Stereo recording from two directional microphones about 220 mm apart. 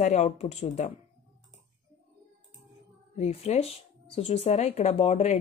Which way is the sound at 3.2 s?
30° left (ahead or behind).